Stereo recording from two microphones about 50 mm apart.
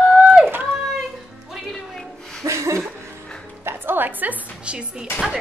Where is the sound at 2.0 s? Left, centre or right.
Centre.